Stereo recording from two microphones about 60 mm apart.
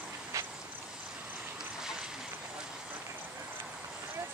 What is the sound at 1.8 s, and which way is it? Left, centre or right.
Boat, centre.